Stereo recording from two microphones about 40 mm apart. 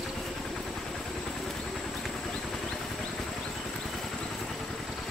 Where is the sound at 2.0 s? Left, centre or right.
Centre.